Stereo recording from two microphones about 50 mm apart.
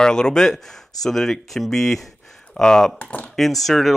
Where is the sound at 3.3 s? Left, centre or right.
Centre.